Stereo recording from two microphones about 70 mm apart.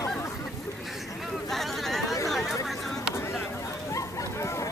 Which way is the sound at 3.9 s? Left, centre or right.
Left.